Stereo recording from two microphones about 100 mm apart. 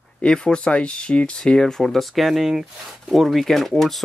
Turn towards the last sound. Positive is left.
turn(degrees=0)  # may be behind; listen again after turning